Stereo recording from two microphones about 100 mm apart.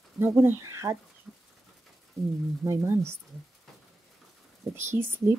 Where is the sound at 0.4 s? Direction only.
25° right (ahead or behind).